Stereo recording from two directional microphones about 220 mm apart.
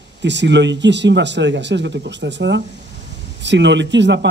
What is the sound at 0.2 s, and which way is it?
Speech, 55° right (ahead or behind).